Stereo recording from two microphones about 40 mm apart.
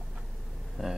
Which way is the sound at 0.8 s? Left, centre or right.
Centre.